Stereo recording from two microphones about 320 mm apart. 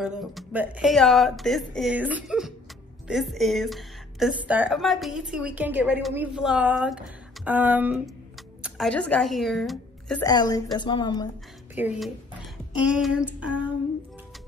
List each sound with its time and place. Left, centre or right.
0.0 s a woman's voice: centre
11.7 s a woman's voice: centre